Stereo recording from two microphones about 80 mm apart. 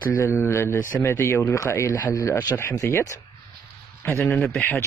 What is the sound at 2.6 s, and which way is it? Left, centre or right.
Speech, left.